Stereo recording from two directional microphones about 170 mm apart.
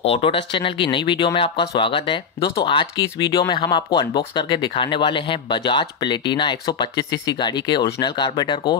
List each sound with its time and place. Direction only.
0.0 s speech: 35° left (ahead or behind)